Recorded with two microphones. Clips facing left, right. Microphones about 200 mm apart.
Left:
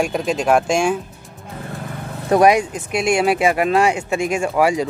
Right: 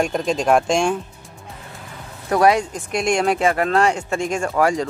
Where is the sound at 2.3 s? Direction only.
15° left (ahead or behind).